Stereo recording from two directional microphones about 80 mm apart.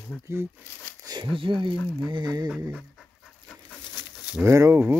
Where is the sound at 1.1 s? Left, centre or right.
Right.